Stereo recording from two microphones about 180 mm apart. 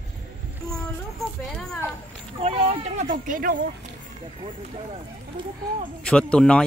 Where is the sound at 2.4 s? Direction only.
35° right (ahead or behind).